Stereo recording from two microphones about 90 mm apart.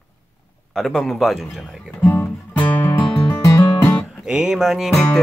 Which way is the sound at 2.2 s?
15° left (ahead or behind).